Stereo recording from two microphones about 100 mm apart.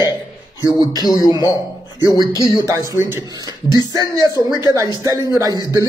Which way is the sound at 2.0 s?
40° right (ahead or behind).